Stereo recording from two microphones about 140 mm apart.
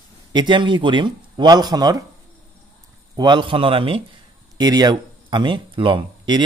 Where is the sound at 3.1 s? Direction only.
35° right (ahead or behind).